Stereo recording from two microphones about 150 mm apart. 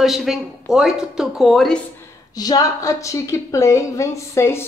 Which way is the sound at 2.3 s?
25° left (ahead or behind).